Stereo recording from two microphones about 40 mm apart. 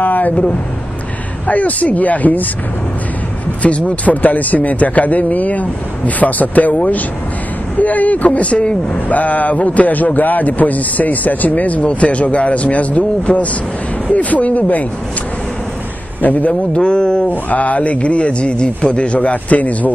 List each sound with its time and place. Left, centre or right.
0.0 s vehicle: left
1.5 s speech: left
3.6 s speech: left
7.8 s speech: left
16.2 s speech: left
16.7 s speech: left
17.3 s speech: left